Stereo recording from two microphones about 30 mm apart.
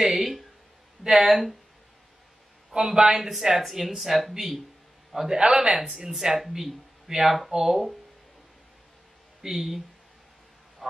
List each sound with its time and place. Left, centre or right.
0.1 s speech: centre
2.7 s speech: right
3.2 s a man's voice: centre
5.5 s speech: right
9.4 s speech: centre
10.8 s honk: centre